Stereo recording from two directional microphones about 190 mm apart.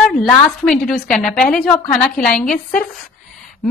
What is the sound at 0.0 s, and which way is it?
A woman's voice, centre (ahead or behind).